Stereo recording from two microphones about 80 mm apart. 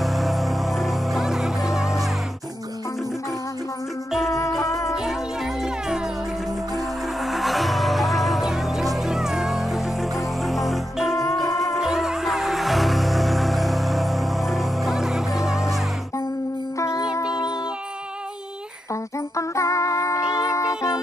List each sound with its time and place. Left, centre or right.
0.0 s music: centre
4.3 s music: left
4.9 s music: centre
11.4 s music: left
11.7 s music: centre
16.7 s music: left
17.0 s music: left
19.1 s music: left